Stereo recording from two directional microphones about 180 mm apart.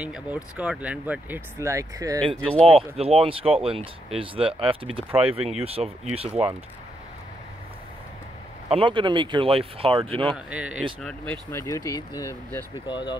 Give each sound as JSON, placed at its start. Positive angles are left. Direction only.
{"t": 0.0, "sound": "speech", "side_deg": -5}
{"t": 2.6, "sound": "speech", "side_deg": -30}
{"t": 8.6, "sound": "speech", "side_deg": -30}
{"t": 10.3, "sound": "speech", "side_deg": -5}
{"t": 11.5, "sound": "speech", "side_deg": 20}